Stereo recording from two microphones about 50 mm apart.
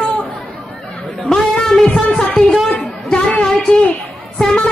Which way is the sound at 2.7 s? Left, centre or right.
Left.